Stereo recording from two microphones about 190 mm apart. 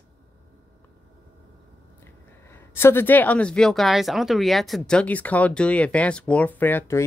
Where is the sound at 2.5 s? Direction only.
10° left (ahead or behind).